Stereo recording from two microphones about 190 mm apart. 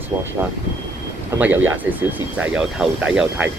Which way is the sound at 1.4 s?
10° right (ahead or behind).